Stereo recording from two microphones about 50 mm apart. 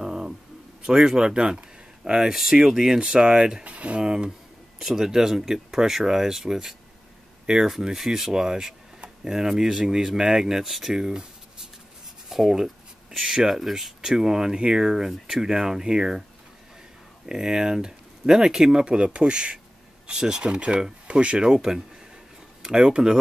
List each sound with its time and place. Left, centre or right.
0.0 s a sound: centre
0.8 s speech: centre
2.2 s speech: centre
3.6 s speech: right
4.0 s speech: centre
17.3 s speech: centre